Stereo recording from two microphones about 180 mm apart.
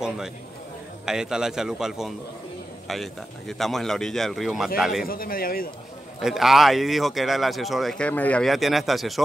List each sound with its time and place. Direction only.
1.0 s speech: 5° right (ahead or behind)
5.0 s a man's voice: 55° left (ahead or behind)
6.2 s speech: centre (ahead or behind)